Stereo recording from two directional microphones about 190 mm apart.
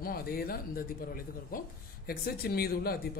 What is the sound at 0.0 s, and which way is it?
Speech, 50° left (ahead or behind).